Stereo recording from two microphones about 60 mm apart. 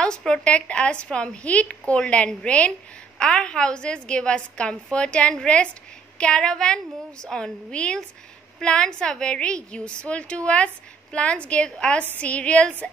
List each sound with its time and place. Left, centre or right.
0.0 s a woman's voice: centre